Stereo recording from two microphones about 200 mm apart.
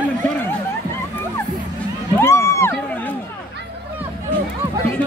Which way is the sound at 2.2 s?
15° left (ahead or behind).